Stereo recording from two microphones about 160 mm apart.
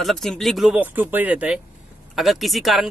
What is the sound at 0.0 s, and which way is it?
Speech, centre (ahead or behind).